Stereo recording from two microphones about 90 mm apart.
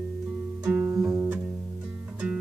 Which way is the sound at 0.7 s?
30° right (ahead or behind).